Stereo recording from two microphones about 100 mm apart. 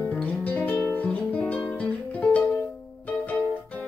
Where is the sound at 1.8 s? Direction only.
15° left (ahead or behind).